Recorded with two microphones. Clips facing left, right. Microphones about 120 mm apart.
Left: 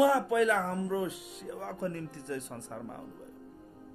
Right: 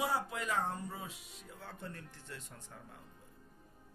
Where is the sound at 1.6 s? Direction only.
55° left (ahead or behind).